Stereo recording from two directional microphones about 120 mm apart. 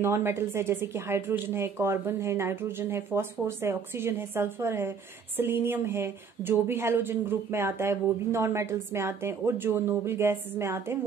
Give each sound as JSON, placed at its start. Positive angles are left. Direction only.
{"t": 0.0, "sound": "a woman's voice", "side_deg": -20}